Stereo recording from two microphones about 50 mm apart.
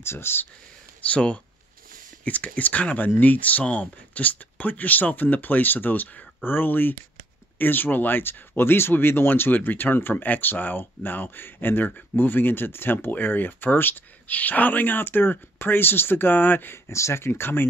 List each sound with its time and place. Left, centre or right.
0.0 s speech: left
1.0 s speech: left
16.9 s speech: left
17.2 s speech: left